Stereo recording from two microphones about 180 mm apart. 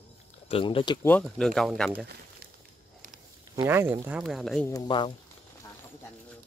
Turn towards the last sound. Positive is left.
turn(degrees=25)  # may be behind; listen again after turning